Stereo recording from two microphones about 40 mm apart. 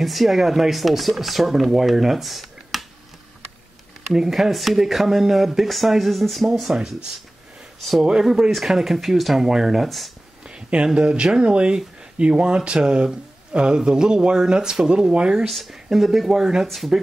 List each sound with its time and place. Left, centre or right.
0.0 s speech: centre
4.0 s speech: centre
8.0 s speech: centre
9.8 s speech: centre
10.4 s a sound: right
11.0 s speech: right
15.4 s speech: centre
16.6 s speech: centre